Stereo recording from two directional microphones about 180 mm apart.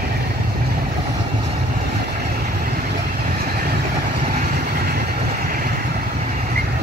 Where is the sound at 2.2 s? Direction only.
60° right (ahead or behind).